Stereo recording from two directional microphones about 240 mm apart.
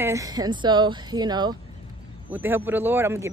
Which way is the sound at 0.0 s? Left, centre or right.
Centre.